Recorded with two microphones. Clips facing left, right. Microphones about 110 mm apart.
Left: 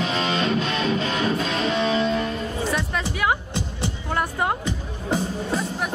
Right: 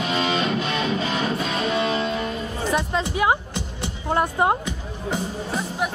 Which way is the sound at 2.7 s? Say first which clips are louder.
Right 3 dB; 25° right (ahead or behind).